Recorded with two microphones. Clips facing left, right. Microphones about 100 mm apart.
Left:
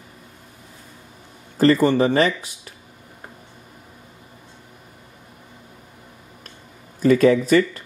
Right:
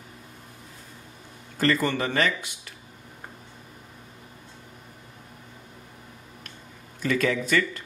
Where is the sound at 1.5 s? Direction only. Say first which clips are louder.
Left 8 dB; 35° left (ahead or behind).